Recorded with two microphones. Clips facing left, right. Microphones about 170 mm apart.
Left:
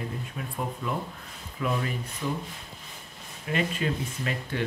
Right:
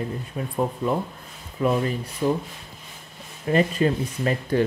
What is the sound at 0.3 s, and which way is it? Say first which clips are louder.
Speech: right 7 dB; 30° right (ahead or behind).